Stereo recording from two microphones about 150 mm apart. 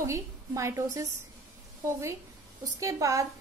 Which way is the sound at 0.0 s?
20° right (ahead or behind).